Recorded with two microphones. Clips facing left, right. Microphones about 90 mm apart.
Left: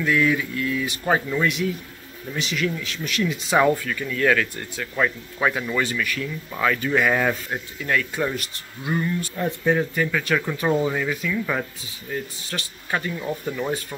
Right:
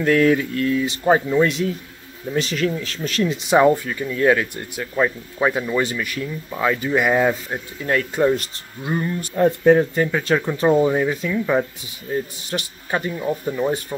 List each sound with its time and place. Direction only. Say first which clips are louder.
0.0 s speech: right 5 dB; 45° right (ahead or behind)
0.7 s speech: right 5 dB; 25° right (ahead or behind)
3.3 s speech: right 4 dB; 20° right (ahead or behind)
7.8 s speech: right 6 dB; 35° right (ahead or behind)
11.0 s speech: right 4 dB; 30° right (ahead or behind)